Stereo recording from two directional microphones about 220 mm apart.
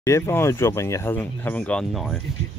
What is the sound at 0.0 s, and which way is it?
Speech, 10° left (ahead or behind).